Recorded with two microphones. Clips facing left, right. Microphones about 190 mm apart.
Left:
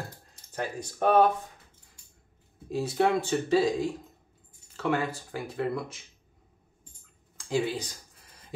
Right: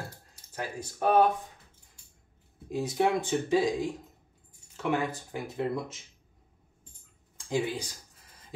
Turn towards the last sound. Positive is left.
turn(degrees=-15)  # may be behind; listen again after turning